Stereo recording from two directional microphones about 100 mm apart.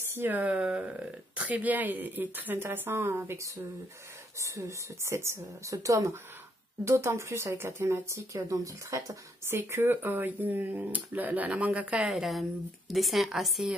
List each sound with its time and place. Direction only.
0.1 s speech: 20° right (ahead or behind); by 9.6 s 35° right (ahead or behind)
9.6 s a woman's voice: 20° right (ahead or behind); by 13.7 s centre (ahead or behind)